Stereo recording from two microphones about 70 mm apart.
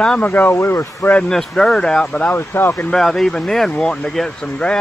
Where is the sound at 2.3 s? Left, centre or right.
Left.